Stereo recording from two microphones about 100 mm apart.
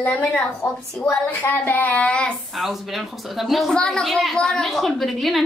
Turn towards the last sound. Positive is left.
turn(degrees=0)  # may be behind; listen again after turning